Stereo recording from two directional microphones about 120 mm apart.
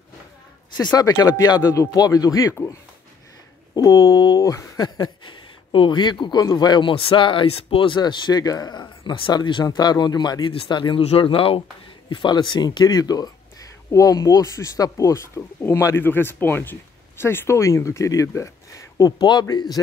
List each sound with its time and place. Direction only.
0.8 s speech: 35° left (ahead or behind)
3.7 s speech: 30° left (ahead or behind)